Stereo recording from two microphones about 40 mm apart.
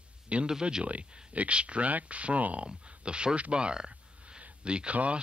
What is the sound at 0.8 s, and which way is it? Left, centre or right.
Speech, right.